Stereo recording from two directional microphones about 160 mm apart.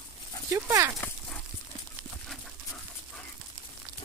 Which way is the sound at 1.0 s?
10° left (ahead or behind).